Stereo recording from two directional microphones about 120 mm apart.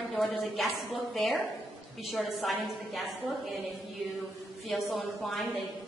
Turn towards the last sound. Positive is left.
turn(degrees=0)  # may be behind; listen again after turning